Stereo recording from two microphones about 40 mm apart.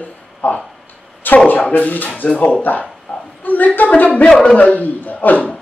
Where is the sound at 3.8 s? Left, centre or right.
Left.